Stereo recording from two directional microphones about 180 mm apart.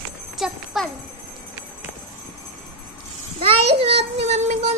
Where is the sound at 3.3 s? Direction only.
30° right (ahead or behind).